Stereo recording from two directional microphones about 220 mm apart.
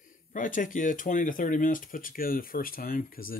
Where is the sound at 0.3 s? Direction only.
35° left (ahead or behind).